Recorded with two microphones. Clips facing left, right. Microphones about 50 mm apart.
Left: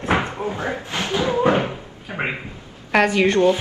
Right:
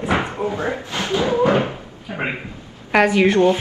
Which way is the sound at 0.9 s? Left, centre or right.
Left.